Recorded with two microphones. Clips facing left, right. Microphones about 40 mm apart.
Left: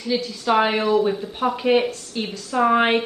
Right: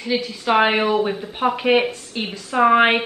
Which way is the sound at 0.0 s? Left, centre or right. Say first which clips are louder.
Right 1 dB; right.